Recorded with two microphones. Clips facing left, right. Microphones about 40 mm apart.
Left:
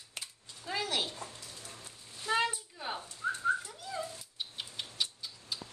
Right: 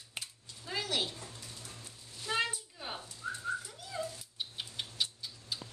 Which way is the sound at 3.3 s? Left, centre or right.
Left.